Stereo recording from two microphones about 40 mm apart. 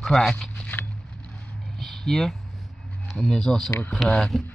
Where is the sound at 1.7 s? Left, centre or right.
Centre.